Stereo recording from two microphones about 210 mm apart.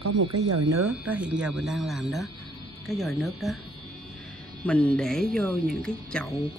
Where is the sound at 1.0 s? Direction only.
5° right (ahead or behind).